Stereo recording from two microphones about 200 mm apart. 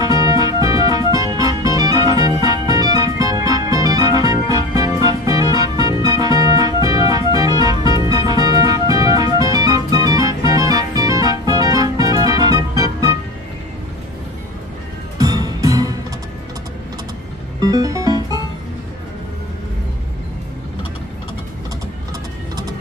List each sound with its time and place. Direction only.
0.0 s music: 20° right (ahead or behind)
15.1 s music: 20° right (ahead or behind)
17.6 s music: 20° right (ahead or behind)